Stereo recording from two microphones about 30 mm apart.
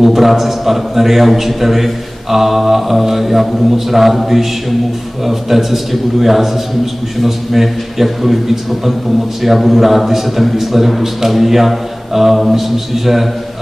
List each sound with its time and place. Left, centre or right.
0.0 s a man's voice: centre